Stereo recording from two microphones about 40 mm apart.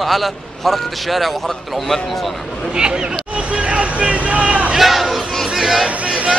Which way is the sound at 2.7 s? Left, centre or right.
Right.